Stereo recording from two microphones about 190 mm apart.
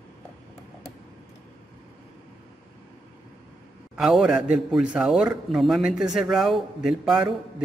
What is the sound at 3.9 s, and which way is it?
A man's voice, 5° right (ahead or behind).